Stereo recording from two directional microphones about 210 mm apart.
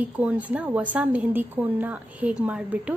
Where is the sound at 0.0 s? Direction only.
5° right (ahead or behind).